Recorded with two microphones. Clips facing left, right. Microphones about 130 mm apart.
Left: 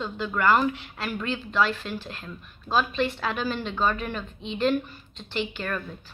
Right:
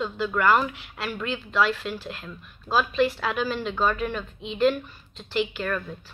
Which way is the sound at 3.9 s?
35° left (ahead or behind).